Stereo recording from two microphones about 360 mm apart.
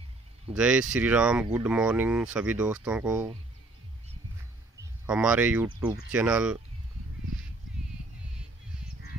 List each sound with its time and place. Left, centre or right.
0.6 s speech: centre
5.0 s speech: centre